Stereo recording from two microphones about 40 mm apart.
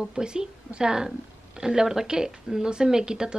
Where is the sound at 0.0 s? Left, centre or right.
Centre.